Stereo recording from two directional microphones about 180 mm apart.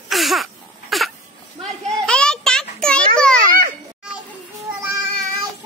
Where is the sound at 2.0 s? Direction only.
5° left (ahead or behind).